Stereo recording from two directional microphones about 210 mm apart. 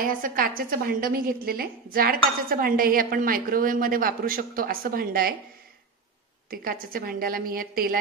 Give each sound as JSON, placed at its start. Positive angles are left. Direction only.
{"t": 0.0, "sound": "speech", "side_deg": -40}
{"t": 6.5, "sound": "speech", "side_deg": -45}